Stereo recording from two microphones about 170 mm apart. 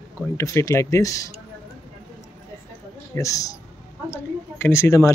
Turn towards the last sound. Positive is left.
turn(degrees=15)  # may be behind; listen again after turning